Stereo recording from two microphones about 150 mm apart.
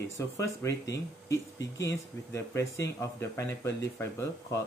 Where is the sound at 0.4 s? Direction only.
20° left (ahead or behind).